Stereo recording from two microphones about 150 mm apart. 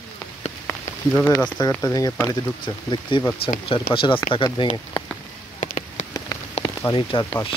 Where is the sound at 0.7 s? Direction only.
15° left (ahead or behind); by 5.0 s 30° left (ahead or behind).